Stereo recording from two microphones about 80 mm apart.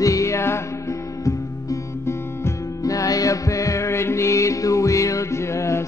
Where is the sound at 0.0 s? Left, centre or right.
Left.